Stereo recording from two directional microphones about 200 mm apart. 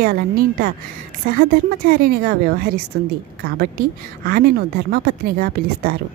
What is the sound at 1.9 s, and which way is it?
Speech, 50° right (ahead or behind).